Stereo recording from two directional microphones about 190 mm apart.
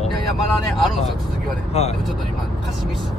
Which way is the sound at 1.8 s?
35° left (ahead or behind).